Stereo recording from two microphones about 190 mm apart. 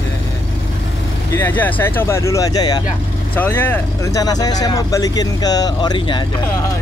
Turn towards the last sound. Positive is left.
turn(degrees=25)  # may be behind; listen again after turning